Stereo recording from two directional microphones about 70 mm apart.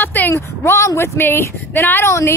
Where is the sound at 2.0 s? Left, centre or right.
Left.